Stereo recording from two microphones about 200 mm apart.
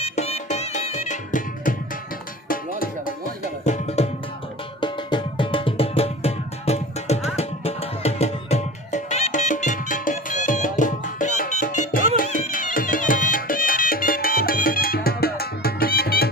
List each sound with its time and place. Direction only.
0.0 s music: 30° left (ahead or behind)
3.6 s music: 35° left (ahead or behind); by 16.3 s 50° left (ahead or behind)